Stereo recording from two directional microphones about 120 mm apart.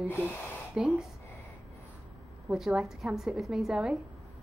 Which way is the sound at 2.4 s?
5° right (ahead or behind).